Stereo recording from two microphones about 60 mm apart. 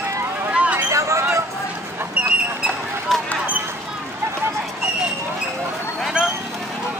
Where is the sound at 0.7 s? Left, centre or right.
Right.